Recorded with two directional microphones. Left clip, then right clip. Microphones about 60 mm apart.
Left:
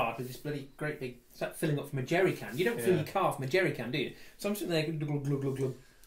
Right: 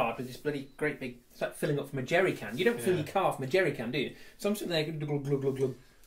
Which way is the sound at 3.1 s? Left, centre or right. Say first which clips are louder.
Right 1 dB; centre.